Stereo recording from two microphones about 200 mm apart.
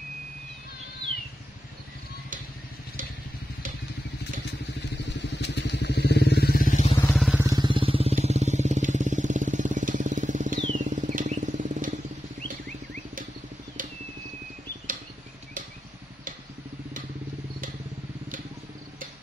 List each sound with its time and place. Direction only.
5.4 s vehicle: 60° left (ahead or behind); by 6.9 s 40° left (ahead or behind)
7.0 s vehicle: 10° left (ahead or behind)
7.2 s vehicle: 10° right (ahead or behind)
7.5 s vehicle: 25° right (ahead or behind)
10.7 s a sound: 40° right (ahead or behind)